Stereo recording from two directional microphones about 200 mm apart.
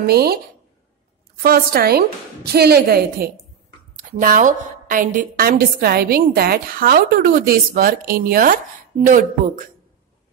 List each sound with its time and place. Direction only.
0.0 s a woman's voice: 50° right (ahead or behind)
1.4 s a woman's voice: 50° right (ahead or behind)